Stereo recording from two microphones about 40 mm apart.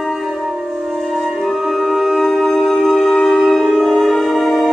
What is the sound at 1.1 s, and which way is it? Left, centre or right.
Music, centre.